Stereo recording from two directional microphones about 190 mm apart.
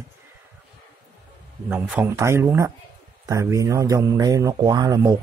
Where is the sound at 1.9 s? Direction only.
15° right (ahead or behind).